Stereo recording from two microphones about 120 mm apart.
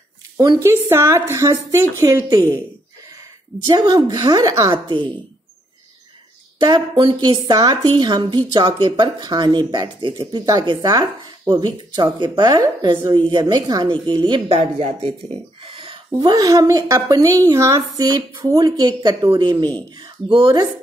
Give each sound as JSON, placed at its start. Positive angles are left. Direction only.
{"t": 0.4, "sound": "speech", "side_deg": -25}
{"t": 3.6, "sound": "speech", "side_deg": -35}
{"t": 4.8, "sound": "a woman's voice", "side_deg": -40}
{"t": 6.6, "sound": "speech", "side_deg": -40}
{"t": 14.6, "sound": "speech", "side_deg": -60}